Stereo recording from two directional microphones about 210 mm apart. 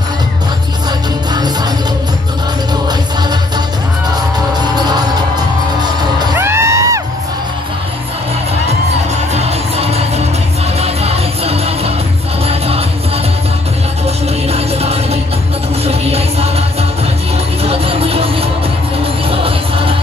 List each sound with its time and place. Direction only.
4.1 s music: 20° right (ahead or behind)
9.3 s music: 30° right (ahead or behind)
14.0 s music: 30° right (ahead or behind)
17.6 s music: 25° right (ahead or behind)